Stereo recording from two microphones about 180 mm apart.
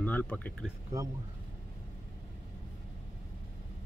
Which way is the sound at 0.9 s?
20° right (ahead or behind).